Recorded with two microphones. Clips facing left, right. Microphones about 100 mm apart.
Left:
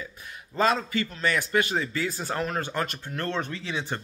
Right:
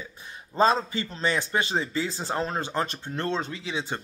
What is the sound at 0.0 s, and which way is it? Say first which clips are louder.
A man's voice: left 1 dB; 25° right (ahead or behind).